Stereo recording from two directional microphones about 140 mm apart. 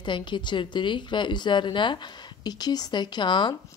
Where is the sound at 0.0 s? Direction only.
35° left (ahead or behind).